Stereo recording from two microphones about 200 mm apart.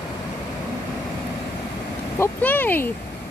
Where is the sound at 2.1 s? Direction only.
10° left (ahead or behind).